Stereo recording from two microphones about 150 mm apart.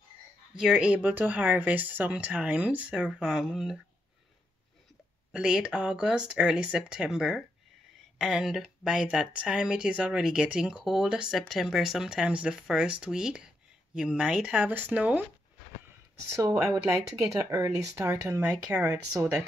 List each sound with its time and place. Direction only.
0.6 s speech: 5° right (ahead or behind)
5.3 s speech: 5° right (ahead or behind)
16.3 s speech: 20° right (ahead or behind)